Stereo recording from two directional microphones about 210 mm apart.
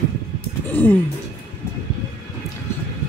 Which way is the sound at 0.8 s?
10° left (ahead or behind).